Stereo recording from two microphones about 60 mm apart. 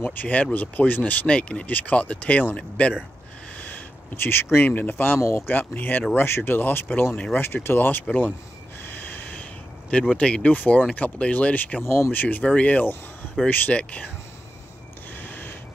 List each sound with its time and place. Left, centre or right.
0.0 s speech: left
1.2 s speech: centre
3.6 s a sound: left
4.6 s speech: left
8.8 s snort: left
10.1 s speech: centre
11.8 s speech: left
12.2 s speech: left
15.1 s printer: left